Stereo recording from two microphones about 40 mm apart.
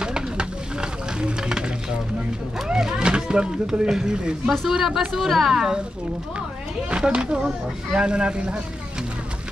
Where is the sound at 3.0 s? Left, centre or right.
Right.